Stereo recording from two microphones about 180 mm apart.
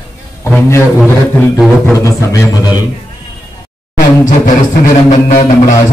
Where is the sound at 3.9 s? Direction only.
45° left (ahead or behind).